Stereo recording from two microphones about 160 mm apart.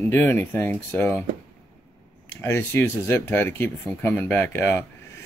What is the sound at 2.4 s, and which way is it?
Speech, 15° left (ahead or behind).